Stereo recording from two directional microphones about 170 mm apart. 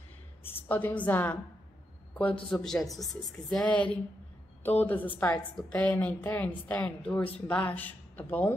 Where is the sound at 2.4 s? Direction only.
5° left (ahead or behind).